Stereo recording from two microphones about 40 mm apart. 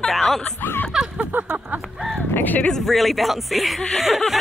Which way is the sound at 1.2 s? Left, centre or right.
Right.